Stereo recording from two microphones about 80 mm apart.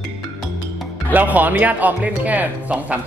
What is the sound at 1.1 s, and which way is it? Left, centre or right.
Speech, right.